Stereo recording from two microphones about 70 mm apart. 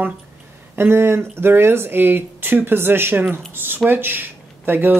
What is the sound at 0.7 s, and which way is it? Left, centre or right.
Speech, right.